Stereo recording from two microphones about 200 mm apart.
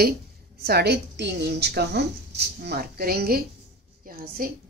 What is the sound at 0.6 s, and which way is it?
A woman's voice, 50° right (ahead or behind).